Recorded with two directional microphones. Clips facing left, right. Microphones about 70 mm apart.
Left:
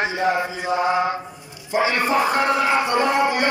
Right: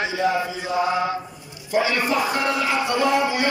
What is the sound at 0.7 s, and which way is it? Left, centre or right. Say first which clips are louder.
Mantra: left 1 dB; left.